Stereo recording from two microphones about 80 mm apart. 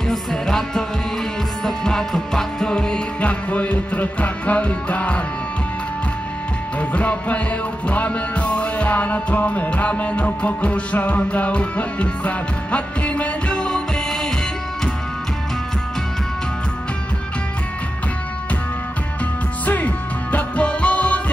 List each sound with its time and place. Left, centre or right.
0.1 s music: centre
6.8 s music: centre
19.6 s music: left